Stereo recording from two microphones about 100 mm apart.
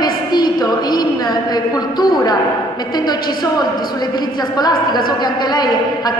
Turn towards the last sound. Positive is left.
turn(degrees=45)  # may be behind; listen again after turning